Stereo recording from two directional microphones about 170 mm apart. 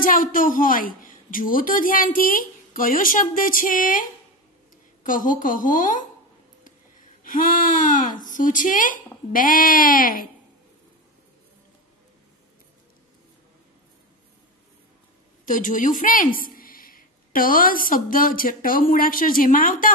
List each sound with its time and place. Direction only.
0.0 s a woman's voice: 55° left (ahead or behind)
7.2 s a woman's voice: 50° left (ahead or behind)
15.4 s a woman's voice: 50° left (ahead or behind)